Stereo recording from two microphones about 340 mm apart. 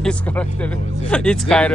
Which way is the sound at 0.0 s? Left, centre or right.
Centre.